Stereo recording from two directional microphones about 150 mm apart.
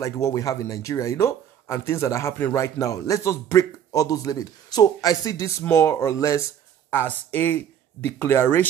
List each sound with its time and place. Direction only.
0.0 s speech: 20° left (ahead or behind)